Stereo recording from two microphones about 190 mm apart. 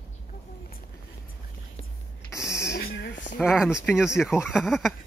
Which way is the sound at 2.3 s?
15° left (ahead or behind).